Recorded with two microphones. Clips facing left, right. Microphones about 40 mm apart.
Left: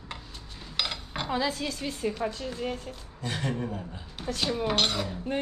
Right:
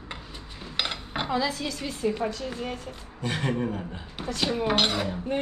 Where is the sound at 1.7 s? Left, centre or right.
Right.